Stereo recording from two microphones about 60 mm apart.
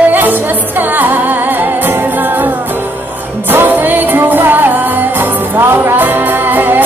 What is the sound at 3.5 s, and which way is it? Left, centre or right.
Music, right.